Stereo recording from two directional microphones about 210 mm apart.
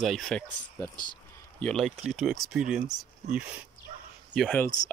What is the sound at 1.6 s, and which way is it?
Speech, 5° left (ahead or behind).